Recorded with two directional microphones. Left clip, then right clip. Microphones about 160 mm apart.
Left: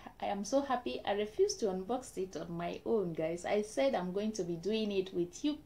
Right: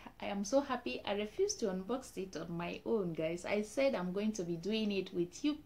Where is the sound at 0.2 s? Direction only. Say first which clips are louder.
Left 1 dB; 15° right (ahead or behind).